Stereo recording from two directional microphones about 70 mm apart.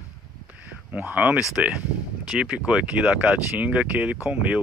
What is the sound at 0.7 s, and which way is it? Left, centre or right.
Speech, right.